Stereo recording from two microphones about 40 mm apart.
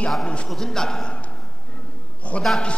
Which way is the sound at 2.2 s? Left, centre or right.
Left.